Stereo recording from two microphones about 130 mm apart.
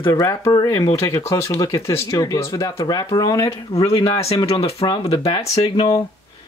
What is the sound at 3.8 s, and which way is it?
Speech, 45° left (ahead or behind).